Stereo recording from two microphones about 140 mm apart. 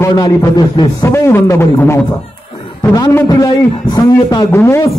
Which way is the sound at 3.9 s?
30° left (ahead or behind).